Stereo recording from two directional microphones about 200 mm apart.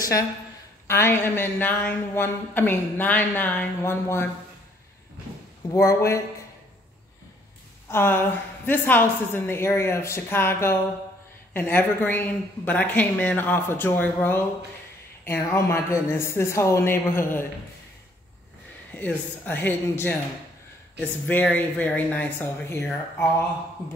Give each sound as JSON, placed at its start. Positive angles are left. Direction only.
{"t": 0.0, "sound": "a woman's voice", "side_deg": 15}
{"t": 5.7, "sound": "a woman's voice", "side_deg": 15}
{"t": 7.9, "sound": "a woman's voice", "side_deg": 10}
{"t": 18.9, "sound": "a woman's voice", "side_deg": 10}
{"t": 21.3, "sound": "a woman's voice", "side_deg": 5}